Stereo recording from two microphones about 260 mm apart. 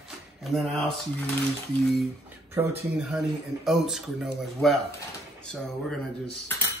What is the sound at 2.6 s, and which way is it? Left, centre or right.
Speech, centre.